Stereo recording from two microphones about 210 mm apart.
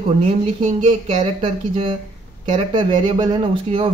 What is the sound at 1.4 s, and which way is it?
Speech, 25° right (ahead or behind).